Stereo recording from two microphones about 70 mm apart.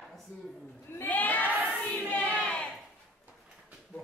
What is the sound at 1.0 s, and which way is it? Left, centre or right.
Crowd, left.